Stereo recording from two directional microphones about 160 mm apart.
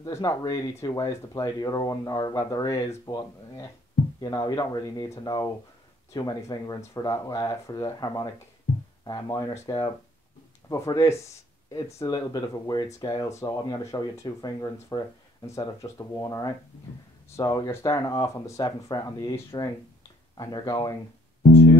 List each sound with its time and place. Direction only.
0.0 s speech: 25° left (ahead or behind)